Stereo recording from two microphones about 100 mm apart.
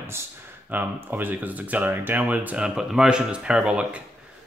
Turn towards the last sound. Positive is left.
turn(degrees=-10)  # may be behind; listen again after turning